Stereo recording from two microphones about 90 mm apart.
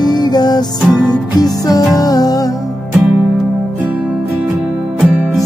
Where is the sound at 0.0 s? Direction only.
50° left (ahead or behind).